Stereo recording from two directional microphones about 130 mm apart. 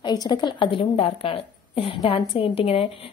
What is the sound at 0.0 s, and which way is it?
A woman's voice, 30° left (ahead or behind).